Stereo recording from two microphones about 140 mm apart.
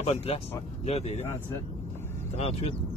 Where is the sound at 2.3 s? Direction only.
45° left (ahead or behind).